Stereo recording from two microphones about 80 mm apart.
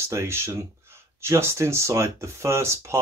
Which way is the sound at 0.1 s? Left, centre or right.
Right.